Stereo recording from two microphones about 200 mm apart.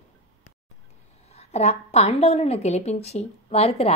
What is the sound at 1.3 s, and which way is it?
A woman's voice, 30° left (ahead or behind).